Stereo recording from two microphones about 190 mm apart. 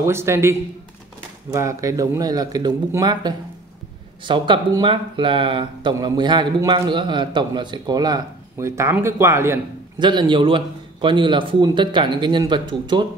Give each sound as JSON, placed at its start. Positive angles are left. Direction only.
{"t": 0.0, "sound": "a man's voice", "side_deg": -15}